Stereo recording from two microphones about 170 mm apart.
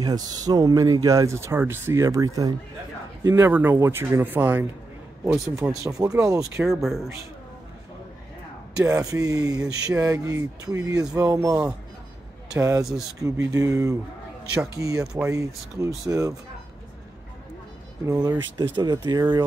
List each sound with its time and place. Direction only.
0.0 s speech: 20° right (ahead or behind)
6.7 s speech: centre (ahead or behind)
8.8 s speech: 20° right (ahead or behind)
18.0 s speech: 20° right (ahead or behind)